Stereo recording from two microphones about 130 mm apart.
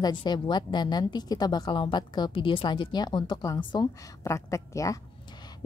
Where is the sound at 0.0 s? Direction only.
35° left (ahead or behind).